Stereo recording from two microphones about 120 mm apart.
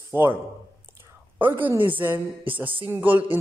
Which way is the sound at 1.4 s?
15° right (ahead or behind).